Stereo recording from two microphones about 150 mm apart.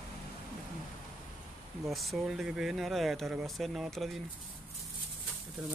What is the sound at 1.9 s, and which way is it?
Speech, centre (ahead or behind).